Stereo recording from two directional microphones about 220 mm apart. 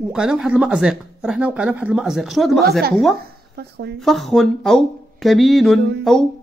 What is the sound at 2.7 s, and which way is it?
Speech, 45° right (ahead or behind).